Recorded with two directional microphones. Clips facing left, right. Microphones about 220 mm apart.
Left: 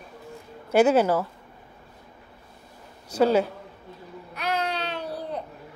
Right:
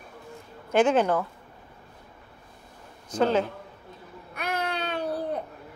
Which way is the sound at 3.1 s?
10° left (ahead or behind).